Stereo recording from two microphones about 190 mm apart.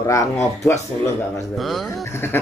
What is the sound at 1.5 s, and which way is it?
Speech, centre (ahead or behind).